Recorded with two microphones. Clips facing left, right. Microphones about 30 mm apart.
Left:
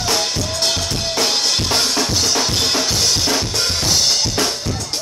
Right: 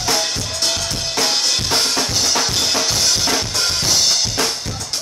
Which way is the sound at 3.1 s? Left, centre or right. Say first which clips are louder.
Even; centre.